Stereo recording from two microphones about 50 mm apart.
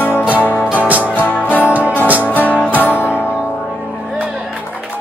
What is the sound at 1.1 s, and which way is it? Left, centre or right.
Music, left.